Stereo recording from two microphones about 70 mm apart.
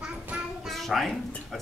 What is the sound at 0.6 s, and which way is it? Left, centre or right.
Speech, centre.